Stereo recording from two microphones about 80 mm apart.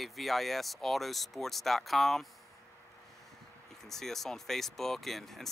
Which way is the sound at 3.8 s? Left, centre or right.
Centre.